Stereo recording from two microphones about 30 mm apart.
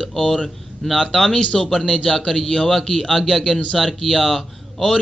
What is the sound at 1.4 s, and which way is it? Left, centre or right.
Speech, left.